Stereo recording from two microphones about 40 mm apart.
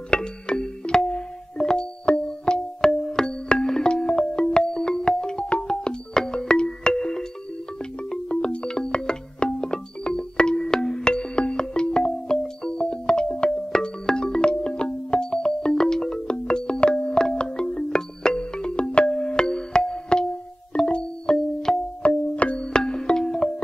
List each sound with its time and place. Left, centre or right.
0.1 s music: left
8.1 s music: left
21.7 s music: centre
22.0 s music: left
22.7 s music: centre